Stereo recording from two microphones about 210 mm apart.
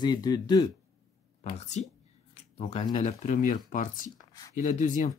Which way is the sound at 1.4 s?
30° left (ahead or behind).